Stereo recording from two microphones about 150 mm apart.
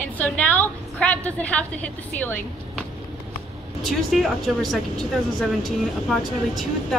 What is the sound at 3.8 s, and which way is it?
Speech, centre (ahead or behind).